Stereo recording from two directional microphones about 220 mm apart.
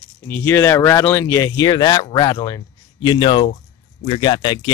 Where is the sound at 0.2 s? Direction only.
10° left (ahead or behind).